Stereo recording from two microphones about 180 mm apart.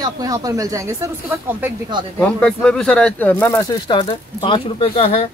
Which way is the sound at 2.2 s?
5° left (ahead or behind).